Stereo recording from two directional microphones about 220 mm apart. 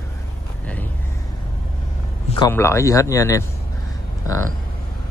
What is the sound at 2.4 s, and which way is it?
Speech, 10° left (ahead or behind).